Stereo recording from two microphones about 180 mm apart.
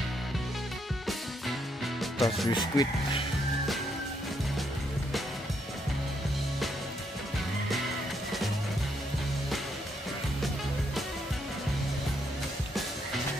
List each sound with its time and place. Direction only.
2.0 s music: centre (ahead or behind)
2.5 s speech: 25° left (ahead or behind)